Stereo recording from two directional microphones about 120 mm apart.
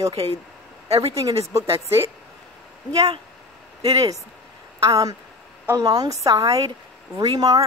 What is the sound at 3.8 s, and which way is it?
Speech, 30° right (ahead or behind).